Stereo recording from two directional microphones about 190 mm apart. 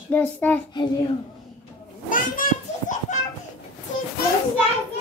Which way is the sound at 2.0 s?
45° left (ahead or behind).